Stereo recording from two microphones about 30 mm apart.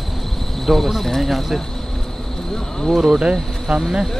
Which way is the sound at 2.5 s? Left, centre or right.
Centre.